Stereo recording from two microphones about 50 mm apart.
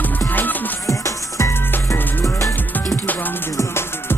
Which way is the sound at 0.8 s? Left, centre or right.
Left.